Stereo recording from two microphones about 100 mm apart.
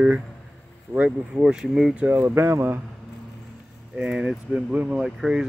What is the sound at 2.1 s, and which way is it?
Speech, 20° right (ahead or behind).